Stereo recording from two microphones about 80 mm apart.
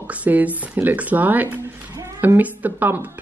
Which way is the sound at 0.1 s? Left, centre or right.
Centre.